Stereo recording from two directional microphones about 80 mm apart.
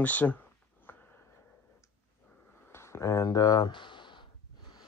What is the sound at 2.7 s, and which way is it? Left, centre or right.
Speech, left.